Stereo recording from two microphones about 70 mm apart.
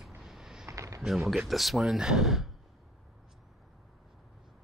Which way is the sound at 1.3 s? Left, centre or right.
Centre.